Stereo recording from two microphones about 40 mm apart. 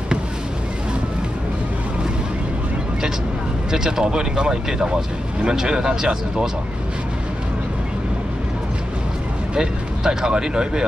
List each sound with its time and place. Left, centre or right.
3.7 s speech: centre
9.6 s speech: centre